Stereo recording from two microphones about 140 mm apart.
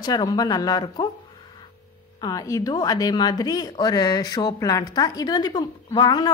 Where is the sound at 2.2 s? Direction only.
25° left (ahead or behind).